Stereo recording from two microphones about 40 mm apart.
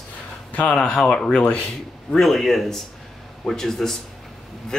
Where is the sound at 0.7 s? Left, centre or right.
Centre.